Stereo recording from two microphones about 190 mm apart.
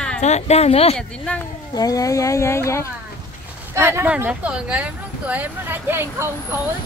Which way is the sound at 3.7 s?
15° right (ahead or behind).